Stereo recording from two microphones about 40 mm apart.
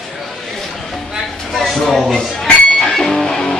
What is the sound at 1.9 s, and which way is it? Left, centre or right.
Speech, centre.